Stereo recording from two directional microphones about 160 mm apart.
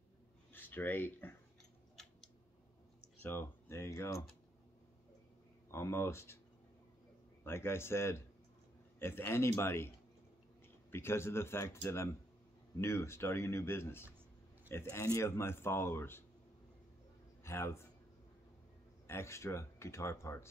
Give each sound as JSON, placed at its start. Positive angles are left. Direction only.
{"t": 0.5, "sound": "speech", "side_deg": 10}
{"t": 3.3, "sound": "speech", "side_deg": 15}
{"t": 5.7, "sound": "speech", "side_deg": 15}
{"t": 7.4, "sound": "speech", "side_deg": 15}
{"t": 10.9, "sound": "speech", "side_deg": 15}
{"t": 17.4, "sound": "a man's voice", "side_deg": 15}
{"t": 19.0, "sound": "speech", "side_deg": 15}